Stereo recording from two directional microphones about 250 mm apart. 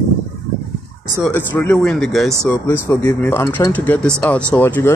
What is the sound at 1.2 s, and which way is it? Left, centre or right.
Speech, centre.